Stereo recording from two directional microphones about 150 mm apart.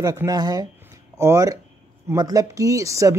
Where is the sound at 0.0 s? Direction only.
25° right (ahead or behind).